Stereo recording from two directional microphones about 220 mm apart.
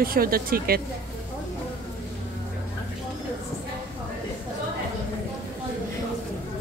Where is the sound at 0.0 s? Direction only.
40° right (ahead or behind).